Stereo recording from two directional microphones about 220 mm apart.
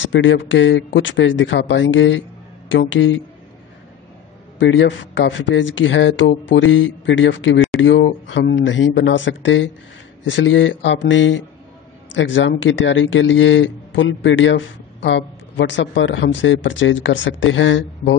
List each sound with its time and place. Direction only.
0.0 s speech: 60° left (ahead or behind)
4.6 s speech: 55° left (ahead or behind)